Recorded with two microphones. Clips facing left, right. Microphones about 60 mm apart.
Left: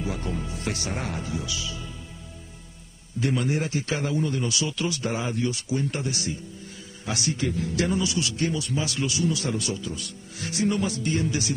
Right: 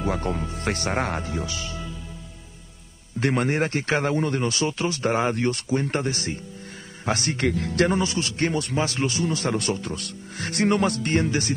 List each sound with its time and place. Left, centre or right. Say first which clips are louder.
0.0 s a man's voice: right 5 dB; right
3.2 s a man's voice: right 3 dB; right